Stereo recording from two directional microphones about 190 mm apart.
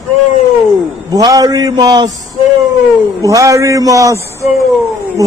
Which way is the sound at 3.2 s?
15° right (ahead or behind).